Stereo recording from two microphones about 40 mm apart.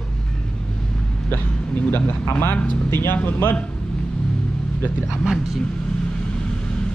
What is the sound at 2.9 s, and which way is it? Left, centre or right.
Speech, left.